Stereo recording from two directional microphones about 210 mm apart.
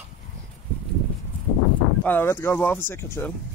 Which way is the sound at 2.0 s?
10° left (ahead or behind).